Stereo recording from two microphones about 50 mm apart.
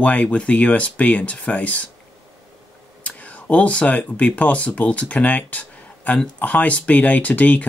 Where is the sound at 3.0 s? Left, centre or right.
Left.